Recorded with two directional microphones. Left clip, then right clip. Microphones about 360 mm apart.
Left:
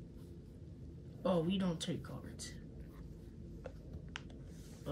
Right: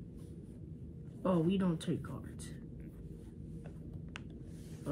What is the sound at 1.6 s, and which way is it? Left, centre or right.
Speech, centre.